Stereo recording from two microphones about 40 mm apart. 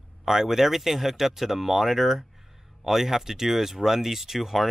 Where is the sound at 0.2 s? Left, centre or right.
Centre.